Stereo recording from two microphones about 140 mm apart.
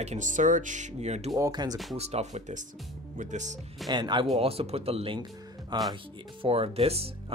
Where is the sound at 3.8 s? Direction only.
30° right (ahead or behind).